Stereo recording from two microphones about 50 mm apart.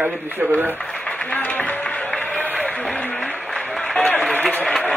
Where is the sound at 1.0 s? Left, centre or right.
Left.